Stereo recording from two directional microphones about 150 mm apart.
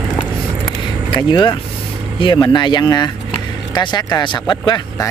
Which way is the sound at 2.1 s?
30° left (ahead or behind).